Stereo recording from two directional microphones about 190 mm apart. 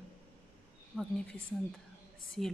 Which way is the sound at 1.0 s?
5° left (ahead or behind).